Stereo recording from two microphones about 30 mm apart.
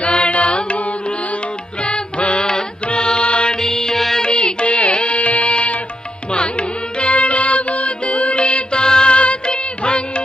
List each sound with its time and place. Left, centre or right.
0.0 s music: left
1.9 s music: left
3.6 s music: centre
4.2 s music: left
7.0 s music: left
8.5 s music: left
9.1 s music: left